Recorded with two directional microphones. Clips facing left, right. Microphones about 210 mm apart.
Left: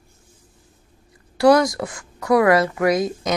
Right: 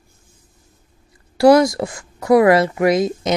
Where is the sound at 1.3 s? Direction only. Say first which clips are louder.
Right 3 dB; 25° right (ahead or behind).